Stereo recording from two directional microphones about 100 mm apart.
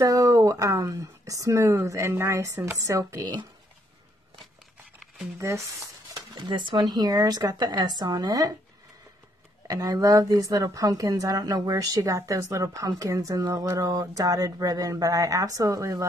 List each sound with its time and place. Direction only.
0.0 s a woman's voice: 35° right (ahead or behind)
6.1 s a woman's voice: 50° right (ahead or behind)
9.7 s a woman's voice: 35° right (ahead or behind)